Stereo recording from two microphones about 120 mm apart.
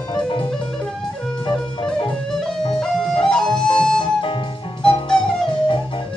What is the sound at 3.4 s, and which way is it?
Music, 40° left (ahead or behind).